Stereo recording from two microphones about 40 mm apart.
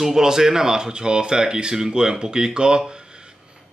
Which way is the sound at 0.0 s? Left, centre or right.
Centre.